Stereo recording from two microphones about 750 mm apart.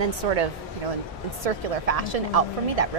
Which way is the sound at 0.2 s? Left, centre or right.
Right.